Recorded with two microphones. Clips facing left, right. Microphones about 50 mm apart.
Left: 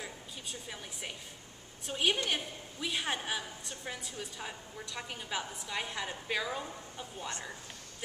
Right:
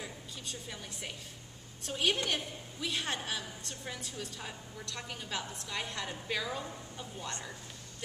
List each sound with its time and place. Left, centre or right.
0.0 s a woman's voice: centre